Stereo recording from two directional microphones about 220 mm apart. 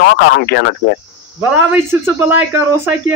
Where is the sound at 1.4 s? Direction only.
10° right (ahead or behind).